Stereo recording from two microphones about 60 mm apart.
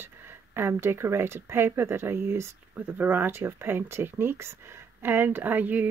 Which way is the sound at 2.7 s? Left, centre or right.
Right.